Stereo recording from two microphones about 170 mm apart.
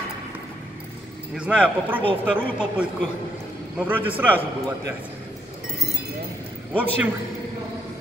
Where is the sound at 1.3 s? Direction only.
5° right (ahead or behind).